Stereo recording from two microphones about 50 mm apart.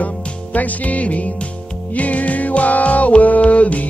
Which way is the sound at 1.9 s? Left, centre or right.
Left.